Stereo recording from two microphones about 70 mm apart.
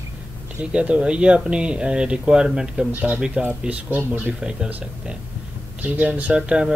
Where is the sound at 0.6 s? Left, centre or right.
Centre.